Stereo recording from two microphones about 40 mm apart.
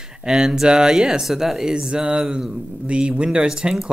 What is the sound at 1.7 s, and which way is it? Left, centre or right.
A man's voice, right.